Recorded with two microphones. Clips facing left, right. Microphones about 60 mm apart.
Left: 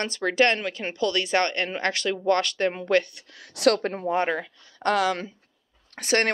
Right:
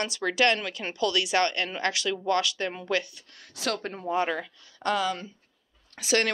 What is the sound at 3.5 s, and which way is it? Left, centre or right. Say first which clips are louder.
A woman's voice: left 9 dB; left.